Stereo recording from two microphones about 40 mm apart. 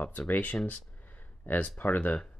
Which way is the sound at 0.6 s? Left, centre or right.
Left.